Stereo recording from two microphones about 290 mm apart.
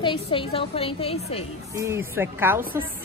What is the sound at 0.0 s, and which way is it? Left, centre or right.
A woman's voice, centre.